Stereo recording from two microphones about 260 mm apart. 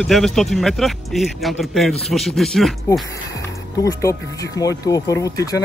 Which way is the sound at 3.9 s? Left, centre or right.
Centre.